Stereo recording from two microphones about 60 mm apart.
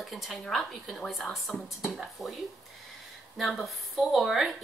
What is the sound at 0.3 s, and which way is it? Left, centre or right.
Speech, centre.